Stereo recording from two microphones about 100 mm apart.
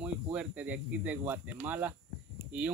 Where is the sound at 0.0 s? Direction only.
15° right (ahead or behind).